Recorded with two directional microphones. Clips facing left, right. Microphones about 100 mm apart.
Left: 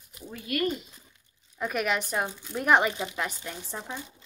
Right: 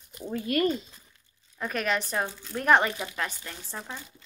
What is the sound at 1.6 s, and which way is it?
Speech, 10° left (ahead or behind).